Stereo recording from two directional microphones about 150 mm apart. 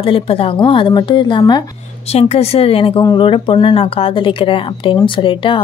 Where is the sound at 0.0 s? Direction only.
40° left (ahead or behind).